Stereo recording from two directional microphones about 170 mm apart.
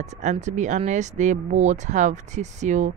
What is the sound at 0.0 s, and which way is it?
Speech, 45° right (ahead or behind).